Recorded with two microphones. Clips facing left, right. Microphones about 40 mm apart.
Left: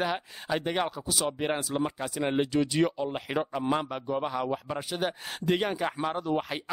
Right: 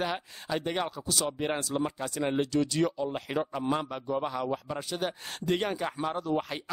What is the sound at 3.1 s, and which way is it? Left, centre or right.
Speech, centre.